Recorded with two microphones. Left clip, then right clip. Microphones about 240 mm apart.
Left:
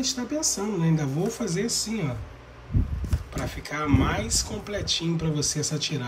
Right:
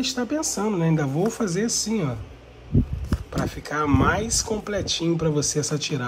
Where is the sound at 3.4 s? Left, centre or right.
Centre.